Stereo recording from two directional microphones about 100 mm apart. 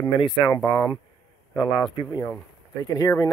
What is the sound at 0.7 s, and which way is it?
Speech, 40° left (ahead or behind).